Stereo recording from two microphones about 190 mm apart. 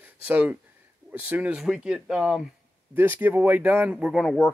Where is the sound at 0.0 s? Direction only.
10° right (ahead or behind).